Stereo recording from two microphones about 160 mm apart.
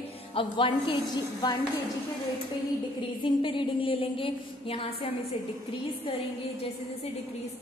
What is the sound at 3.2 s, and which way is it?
A woman's voice, 30° left (ahead or behind).